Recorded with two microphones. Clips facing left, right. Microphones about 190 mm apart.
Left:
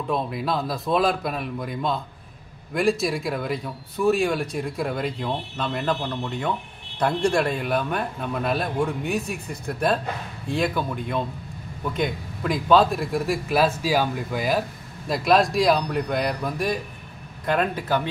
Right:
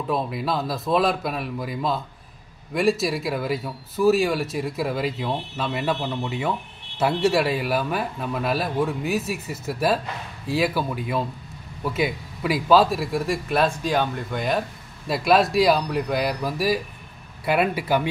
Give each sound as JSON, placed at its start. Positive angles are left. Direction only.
{"t": 0.1, "sound": "speech", "side_deg": 0}